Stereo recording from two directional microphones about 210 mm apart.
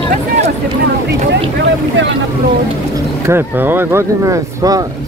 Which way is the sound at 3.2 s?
10° right (ahead or behind).